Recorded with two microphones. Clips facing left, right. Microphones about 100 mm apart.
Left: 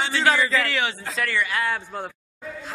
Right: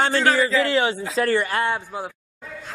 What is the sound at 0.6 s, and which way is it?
Speech, 30° right (ahead or behind).